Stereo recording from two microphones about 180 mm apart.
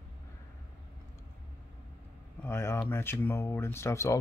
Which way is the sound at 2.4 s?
15° left (ahead or behind).